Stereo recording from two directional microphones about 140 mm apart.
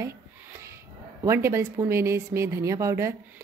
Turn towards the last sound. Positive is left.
turn(degrees=-20)  # may be behind; listen again after turning